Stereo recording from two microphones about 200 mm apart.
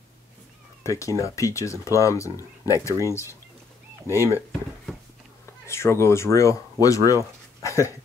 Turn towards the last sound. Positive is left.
turn(degrees=15)  # may be behind; listen again after turning